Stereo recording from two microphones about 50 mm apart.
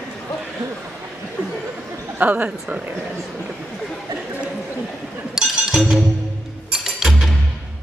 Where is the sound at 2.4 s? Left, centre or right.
Right.